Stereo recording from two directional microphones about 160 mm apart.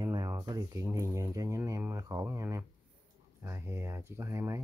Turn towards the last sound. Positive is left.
turn(degrees=-20)  # may be behind; listen again after turning